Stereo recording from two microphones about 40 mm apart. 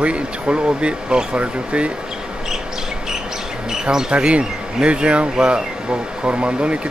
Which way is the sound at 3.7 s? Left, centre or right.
Centre.